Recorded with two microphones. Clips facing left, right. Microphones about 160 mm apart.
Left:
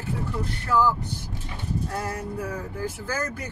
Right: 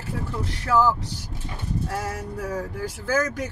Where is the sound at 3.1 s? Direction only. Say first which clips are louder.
Right 6 dB; 90° right.